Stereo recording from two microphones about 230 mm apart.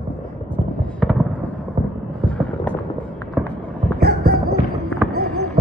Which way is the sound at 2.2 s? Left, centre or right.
Centre.